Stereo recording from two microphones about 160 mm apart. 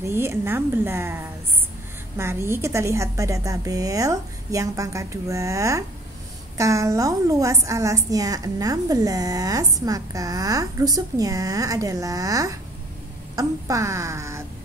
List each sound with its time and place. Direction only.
0.0 s a woman's voice: 15° right (ahead or behind)